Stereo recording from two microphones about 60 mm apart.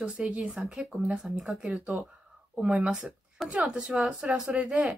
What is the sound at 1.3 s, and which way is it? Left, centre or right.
Speech, centre.